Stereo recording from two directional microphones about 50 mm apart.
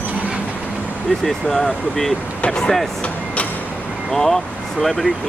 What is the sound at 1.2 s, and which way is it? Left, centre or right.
Speech, centre.